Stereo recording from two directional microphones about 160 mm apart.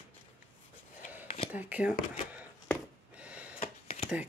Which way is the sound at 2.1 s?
10° right (ahead or behind).